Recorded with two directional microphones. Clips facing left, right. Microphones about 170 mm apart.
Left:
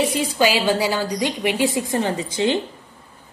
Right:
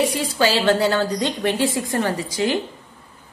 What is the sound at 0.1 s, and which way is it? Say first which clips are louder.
A woman's voice: left 1 dB; 15° left (ahead or behind).